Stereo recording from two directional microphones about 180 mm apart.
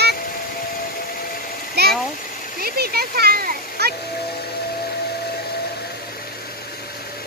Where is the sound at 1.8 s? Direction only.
65° right (ahead or behind).